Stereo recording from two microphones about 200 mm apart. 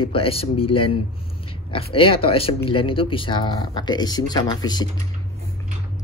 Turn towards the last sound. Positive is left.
turn(degrees=20)  # may be behind; listen again after turning